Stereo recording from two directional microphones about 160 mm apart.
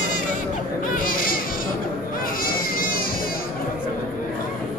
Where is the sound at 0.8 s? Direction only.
60° left (ahead or behind).